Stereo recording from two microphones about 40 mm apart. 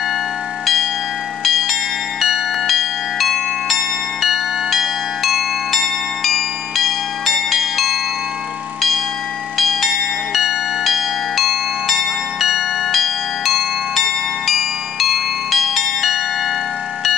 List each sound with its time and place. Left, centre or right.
1.4 s bell: centre
9.6 s bell: centre